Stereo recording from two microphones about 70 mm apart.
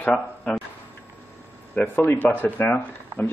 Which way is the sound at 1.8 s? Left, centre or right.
Left.